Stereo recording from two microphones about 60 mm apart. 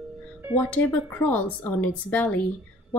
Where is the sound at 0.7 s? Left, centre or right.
Left.